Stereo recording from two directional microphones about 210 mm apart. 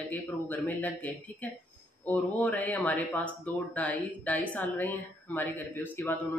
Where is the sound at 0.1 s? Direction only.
10° left (ahead or behind).